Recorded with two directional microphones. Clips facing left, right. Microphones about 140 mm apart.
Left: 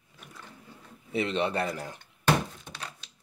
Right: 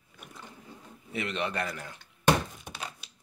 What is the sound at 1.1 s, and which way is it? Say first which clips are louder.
Speech: left 5 dB; 30° left (ahead or behind).